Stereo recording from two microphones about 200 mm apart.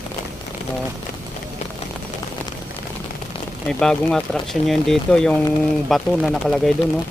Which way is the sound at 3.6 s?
5° left (ahead or behind).